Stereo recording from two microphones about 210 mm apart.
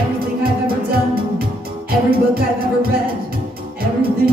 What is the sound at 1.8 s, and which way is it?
Music, 45° right (ahead or behind).